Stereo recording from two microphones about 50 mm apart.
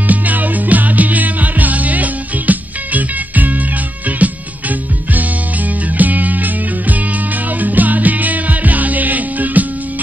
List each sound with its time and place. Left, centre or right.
0.1 s music: right